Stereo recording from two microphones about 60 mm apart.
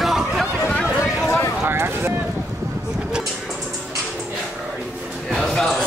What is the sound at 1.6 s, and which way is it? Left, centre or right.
Speech, right.